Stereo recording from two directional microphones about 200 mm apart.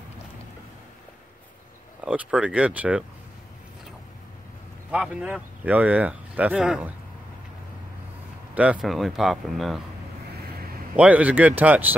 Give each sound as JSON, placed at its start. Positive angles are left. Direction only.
{"t": 2.0, "sound": "speech", "side_deg": -5}
{"t": 4.9, "sound": "speech", "side_deg": -5}
{"t": 8.5, "sound": "speech", "side_deg": -5}
{"t": 11.0, "sound": "speech", "side_deg": -5}